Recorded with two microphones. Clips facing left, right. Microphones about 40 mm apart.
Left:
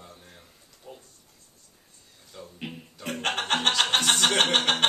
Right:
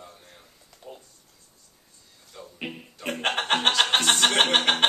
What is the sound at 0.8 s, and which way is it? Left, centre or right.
Speech, centre.